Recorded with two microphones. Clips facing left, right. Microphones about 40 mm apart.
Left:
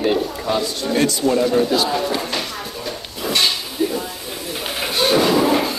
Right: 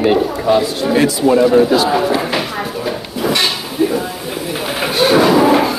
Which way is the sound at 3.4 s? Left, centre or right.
Centre.